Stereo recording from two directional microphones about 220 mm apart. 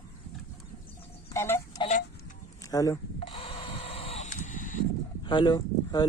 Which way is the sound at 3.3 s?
25° left (ahead or behind).